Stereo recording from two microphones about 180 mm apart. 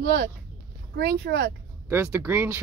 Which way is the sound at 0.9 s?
70° right (ahead or behind).